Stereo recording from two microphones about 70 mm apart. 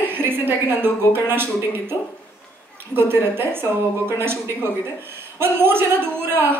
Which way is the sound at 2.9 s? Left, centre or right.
Right.